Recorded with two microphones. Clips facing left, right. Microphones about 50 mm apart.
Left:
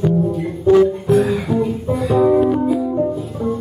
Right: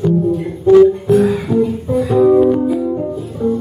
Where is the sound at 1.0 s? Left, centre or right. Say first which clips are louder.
Right 3 dB; centre.